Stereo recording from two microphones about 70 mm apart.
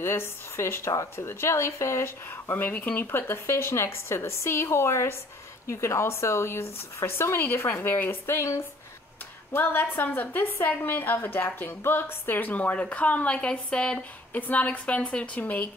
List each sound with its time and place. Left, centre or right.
0.0 s a woman's voice: left
9.5 s a woman's voice: left